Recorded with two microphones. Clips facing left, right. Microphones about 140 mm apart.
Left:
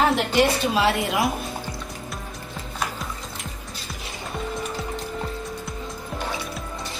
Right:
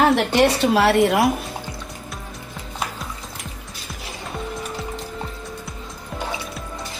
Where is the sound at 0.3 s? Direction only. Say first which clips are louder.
Right 4 dB; 65° right (ahead or behind).